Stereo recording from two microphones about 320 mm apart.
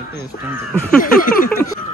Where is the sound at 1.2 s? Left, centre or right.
Left.